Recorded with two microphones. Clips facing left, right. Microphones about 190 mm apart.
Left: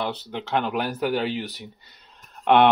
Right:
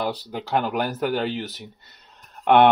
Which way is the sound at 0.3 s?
5° right (ahead or behind).